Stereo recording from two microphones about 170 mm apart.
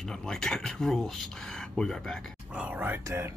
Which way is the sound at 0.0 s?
5° left (ahead or behind).